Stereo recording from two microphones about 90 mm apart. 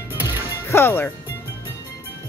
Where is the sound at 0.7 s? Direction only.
25° left (ahead or behind).